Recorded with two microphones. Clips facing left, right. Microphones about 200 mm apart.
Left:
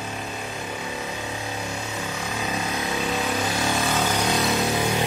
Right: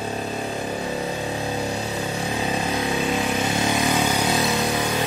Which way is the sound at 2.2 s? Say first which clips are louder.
Right 3 dB; 30° right (ahead or behind).